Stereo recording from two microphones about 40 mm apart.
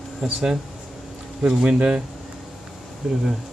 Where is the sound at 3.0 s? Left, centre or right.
Centre.